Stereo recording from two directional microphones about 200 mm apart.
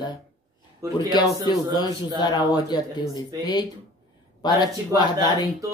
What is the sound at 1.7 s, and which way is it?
Speech, 20° left (ahead or behind).